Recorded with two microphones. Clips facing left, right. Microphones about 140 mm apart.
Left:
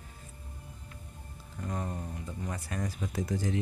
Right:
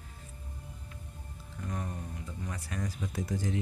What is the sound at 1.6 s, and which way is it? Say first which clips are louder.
Speech: left 2 dB; 35° left (ahead or behind).